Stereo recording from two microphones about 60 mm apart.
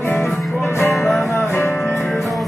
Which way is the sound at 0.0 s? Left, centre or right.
Left.